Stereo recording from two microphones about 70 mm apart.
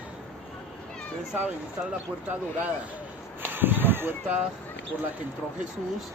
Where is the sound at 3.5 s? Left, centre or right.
Right.